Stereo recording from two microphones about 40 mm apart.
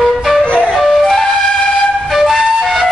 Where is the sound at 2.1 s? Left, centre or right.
Centre.